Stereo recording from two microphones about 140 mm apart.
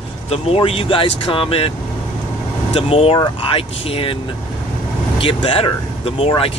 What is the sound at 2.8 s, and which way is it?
Speech, 45° left (ahead or behind).